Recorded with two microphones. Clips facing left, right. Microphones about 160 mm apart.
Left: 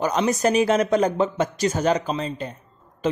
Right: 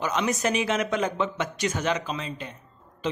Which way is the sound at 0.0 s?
40° left (ahead or behind).